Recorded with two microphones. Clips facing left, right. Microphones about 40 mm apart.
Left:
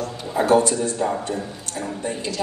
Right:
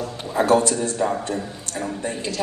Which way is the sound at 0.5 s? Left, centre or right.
Left.